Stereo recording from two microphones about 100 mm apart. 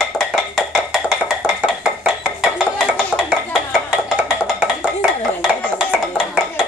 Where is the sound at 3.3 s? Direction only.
10° right (ahead or behind).